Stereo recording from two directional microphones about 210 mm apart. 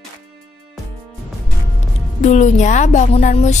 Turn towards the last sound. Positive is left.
turn(degrees=35)  # may be behind; listen again after turning